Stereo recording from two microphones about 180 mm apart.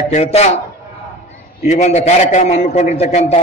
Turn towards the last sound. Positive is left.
turn(degrees=35)  # may be behind; listen again after turning